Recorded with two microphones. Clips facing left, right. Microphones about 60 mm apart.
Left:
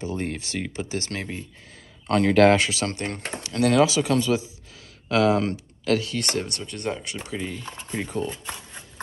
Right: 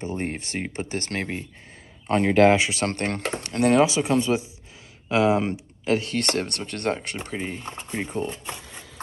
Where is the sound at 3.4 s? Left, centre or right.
Right.